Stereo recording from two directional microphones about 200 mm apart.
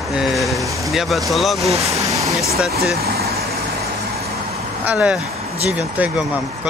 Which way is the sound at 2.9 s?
50° right (ahead or behind).